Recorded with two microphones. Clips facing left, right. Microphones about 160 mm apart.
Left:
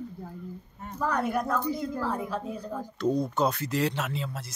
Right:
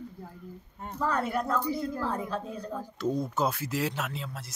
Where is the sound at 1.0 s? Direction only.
15° left (ahead or behind).